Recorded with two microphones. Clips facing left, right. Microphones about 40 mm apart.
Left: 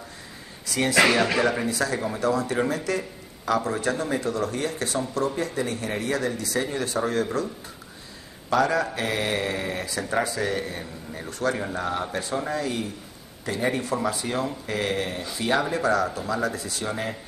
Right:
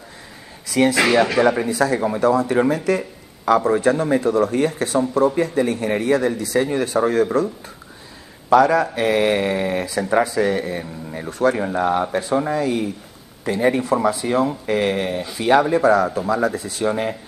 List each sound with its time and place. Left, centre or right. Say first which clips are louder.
1.4 s speech: right 7 dB; right
8.5 s speech: right 8 dB; right